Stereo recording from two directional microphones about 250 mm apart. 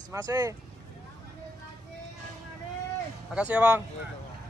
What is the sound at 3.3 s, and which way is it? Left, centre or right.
Speech, centre.